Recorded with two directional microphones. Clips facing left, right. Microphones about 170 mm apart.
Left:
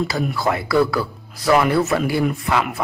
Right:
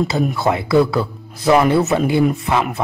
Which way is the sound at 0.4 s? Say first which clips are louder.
Right 2 dB; 20° right (ahead or behind).